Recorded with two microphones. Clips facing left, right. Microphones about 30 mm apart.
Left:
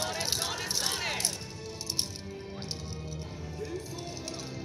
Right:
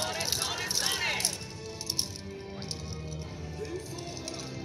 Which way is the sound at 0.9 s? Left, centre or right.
Right.